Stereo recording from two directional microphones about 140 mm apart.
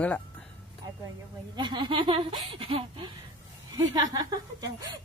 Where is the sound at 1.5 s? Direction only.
35° right (ahead or behind).